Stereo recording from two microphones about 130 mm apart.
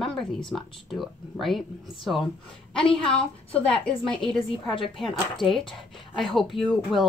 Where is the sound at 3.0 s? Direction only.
5° left (ahead or behind).